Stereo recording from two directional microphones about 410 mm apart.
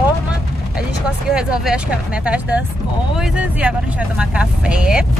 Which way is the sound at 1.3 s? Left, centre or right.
Centre.